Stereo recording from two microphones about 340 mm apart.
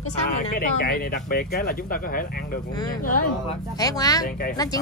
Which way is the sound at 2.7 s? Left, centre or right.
Centre.